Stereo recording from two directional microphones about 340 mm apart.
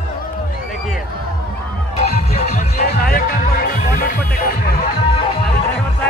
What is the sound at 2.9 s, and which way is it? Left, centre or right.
Music, left.